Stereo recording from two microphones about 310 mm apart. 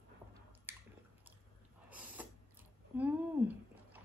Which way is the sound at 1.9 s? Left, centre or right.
Centre.